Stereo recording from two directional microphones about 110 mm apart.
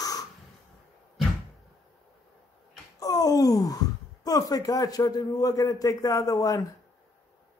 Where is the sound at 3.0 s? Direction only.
35° left (ahead or behind).